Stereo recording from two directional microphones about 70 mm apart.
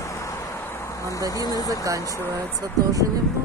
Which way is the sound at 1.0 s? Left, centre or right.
Left.